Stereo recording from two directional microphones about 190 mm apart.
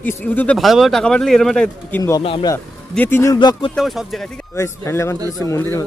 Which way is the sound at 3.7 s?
Centre (ahead or behind).